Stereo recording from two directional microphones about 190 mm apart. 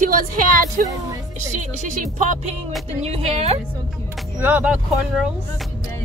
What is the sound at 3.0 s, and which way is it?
Speech, 35° right (ahead or behind).